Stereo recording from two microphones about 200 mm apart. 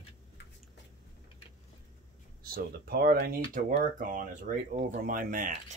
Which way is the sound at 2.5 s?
50° right (ahead or behind).